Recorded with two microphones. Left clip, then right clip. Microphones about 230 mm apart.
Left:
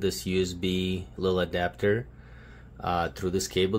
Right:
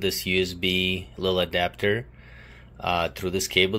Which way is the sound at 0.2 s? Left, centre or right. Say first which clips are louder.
Right 4 dB; centre.